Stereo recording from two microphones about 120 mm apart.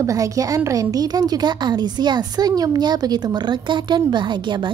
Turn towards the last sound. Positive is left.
turn(degrees=-40)  # may be behind; listen again after turning